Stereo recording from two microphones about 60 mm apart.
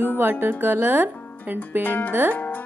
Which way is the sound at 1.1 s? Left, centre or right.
Left.